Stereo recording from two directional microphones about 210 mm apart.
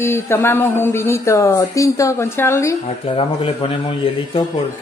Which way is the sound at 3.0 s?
25° left (ahead or behind).